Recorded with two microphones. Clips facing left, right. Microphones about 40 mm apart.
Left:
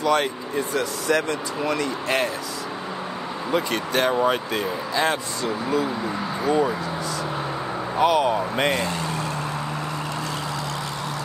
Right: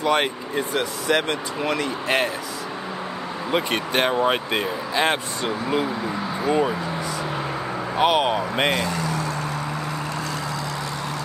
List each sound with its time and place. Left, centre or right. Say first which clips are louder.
0.0 s speech: even; right
3.5 s speech: right 1 dB; right
6.0 s speech: even; centre
7.9 s speech: even; right